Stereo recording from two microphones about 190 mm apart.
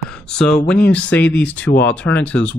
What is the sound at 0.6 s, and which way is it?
Speech, 5° left (ahead or behind).